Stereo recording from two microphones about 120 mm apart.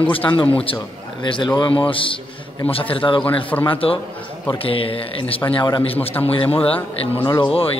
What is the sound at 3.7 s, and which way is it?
A man's voice, 50° left (ahead or behind).